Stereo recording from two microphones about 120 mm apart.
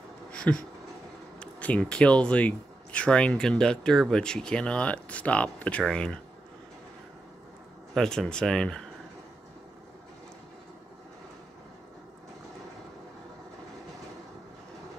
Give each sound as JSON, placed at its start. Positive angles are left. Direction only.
{"t": 0.3, "sound": "a sound", "side_deg": 10}
{"t": 1.4, "sound": "speech", "side_deg": 10}
{"t": 7.9, "sound": "speech", "side_deg": 5}